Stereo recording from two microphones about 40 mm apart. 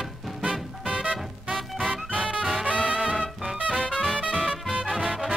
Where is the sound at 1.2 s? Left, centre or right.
Centre.